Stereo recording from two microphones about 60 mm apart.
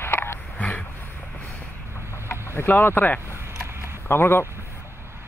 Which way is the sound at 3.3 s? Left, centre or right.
Right.